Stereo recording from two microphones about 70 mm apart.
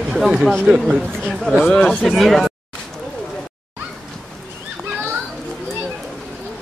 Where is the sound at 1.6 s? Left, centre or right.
Centre.